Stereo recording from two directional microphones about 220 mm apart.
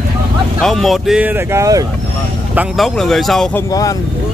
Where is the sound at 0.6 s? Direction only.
Centre (ahead or behind); by 1.8 s 15° right (ahead or behind).